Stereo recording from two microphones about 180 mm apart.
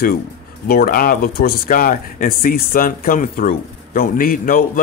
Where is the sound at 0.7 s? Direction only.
55° left (ahead or behind).